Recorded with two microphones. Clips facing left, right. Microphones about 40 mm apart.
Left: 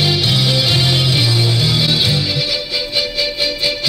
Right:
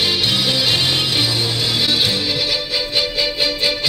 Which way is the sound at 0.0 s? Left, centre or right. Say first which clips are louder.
Left 2 dB; centre.